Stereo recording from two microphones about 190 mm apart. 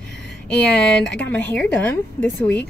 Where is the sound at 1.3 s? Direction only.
10° left (ahead or behind).